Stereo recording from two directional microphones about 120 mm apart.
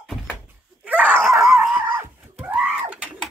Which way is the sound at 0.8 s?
10° right (ahead or behind).